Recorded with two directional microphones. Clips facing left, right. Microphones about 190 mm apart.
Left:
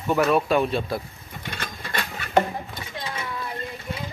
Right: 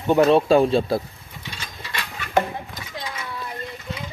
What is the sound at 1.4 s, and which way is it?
Ratchet, 55° left (ahead or behind).